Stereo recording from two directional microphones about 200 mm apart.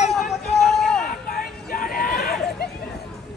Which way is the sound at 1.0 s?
45° left (ahead or behind).